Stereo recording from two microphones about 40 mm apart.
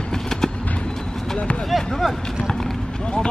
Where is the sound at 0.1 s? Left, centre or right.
Centre.